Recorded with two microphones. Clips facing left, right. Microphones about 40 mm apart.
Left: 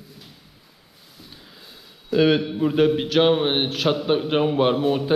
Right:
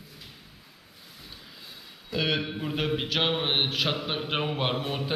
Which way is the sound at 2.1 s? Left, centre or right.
Left.